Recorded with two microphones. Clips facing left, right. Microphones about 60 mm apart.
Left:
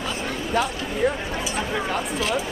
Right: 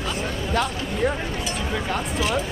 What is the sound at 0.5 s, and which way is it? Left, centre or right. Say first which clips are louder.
Speech: left 1 dB; centre.